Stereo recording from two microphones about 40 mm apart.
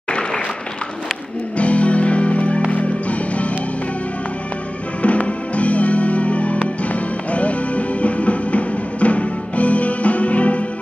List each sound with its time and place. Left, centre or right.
1.6 s music: left
5.0 s music: left